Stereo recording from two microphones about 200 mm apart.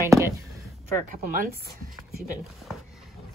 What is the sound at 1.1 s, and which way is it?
Speech, 45° right (ahead or behind).